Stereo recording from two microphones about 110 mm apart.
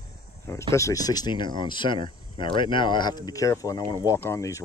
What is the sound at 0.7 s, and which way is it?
Speech, 30° left (ahead or behind).